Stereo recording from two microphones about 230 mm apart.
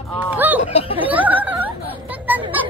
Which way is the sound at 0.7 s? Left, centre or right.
Left.